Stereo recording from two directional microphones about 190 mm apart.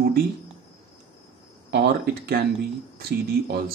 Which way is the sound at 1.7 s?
60° right (ahead or behind).